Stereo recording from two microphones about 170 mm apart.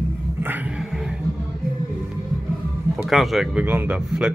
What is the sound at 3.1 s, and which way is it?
Speech, centre (ahead or behind).